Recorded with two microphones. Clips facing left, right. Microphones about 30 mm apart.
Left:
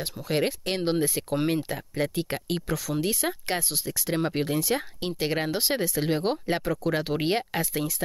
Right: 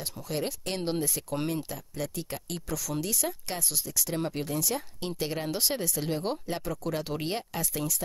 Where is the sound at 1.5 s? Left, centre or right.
Left.